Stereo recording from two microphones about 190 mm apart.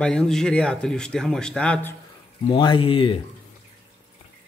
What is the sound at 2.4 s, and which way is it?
Speech, 25° left (ahead or behind).